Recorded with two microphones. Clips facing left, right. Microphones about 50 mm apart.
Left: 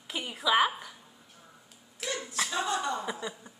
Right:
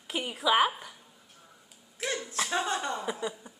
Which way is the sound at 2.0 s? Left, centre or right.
Centre.